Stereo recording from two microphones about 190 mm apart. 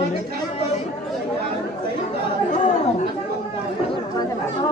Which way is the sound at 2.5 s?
40° left (ahead or behind).